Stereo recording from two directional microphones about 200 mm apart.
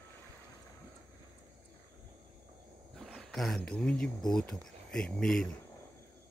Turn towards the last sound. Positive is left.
turn(degrees=5)  # may be behind; listen again after turning